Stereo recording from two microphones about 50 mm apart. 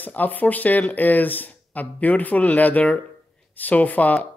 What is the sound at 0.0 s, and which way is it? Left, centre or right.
Speech, left.